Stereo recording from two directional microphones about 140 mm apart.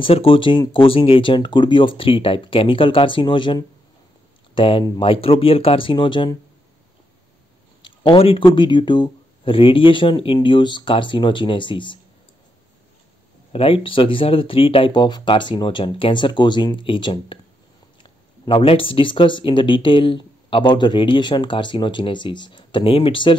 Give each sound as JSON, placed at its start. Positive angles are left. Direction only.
{"t": 0.0, "sound": "speech", "side_deg": 40}
{"t": 7.8, "sound": "a sound", "side_deg": 35}
{"t": 8.5, "sound": "speech", "side_deg": 35}
{"t": 13.5, "sound": "speech", "side_deg": 40}